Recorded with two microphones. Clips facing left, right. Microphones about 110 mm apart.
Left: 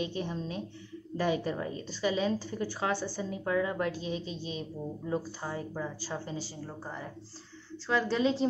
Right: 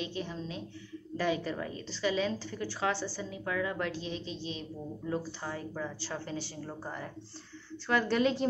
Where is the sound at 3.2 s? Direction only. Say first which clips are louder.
Left 4 dB; 30° left (ahead or behind).